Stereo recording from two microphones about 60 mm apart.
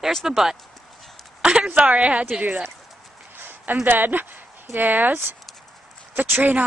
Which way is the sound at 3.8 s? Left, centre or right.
Right.